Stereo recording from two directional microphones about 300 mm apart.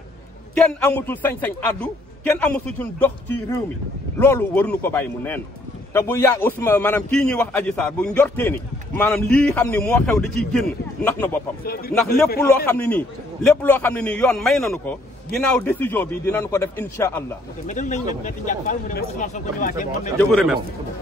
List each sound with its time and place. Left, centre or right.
0.6 s a man's voice: centre
12.4 s a man's voice: centre
17.6 s speech: left
20.2 s a man's voice: centre